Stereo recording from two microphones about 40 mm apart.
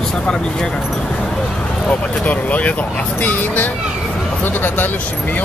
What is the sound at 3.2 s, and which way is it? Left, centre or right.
Speech, left.